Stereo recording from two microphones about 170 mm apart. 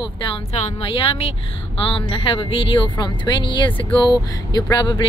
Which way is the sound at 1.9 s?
30° left (ahead or behind).